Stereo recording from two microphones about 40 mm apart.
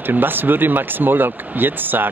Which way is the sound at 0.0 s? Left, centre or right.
Right.